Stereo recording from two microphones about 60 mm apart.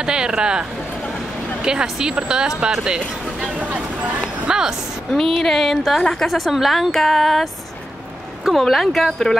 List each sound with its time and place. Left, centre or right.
0.0 s a woman's voice: centre
3.5 s vehicle: right
4.5 s a woman's voice: centre
5.1 s a woman's voice: centre
8.5 s a woman's voice: centre